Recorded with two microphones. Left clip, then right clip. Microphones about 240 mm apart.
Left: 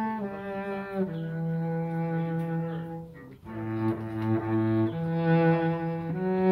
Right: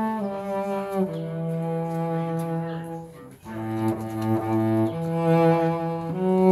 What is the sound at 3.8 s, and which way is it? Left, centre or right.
Cello, right.